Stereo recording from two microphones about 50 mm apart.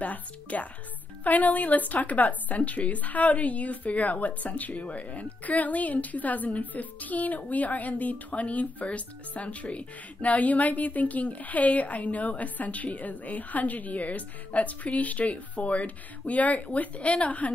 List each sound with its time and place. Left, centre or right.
0.0 s speech: left